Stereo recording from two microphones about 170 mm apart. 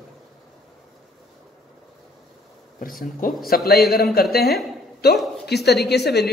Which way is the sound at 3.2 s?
55° left (ahead or behind).